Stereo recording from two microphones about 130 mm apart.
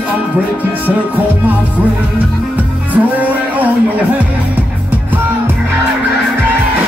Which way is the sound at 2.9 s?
10° right (ahead or behind).